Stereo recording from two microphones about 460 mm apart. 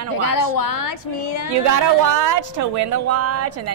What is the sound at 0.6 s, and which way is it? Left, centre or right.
Speech, left.